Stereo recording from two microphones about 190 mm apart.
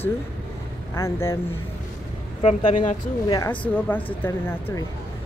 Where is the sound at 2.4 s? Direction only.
35° left (ahead or behind).